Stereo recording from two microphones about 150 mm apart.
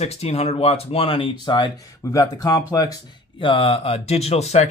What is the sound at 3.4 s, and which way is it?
Speech, 35° left (ahead or behind).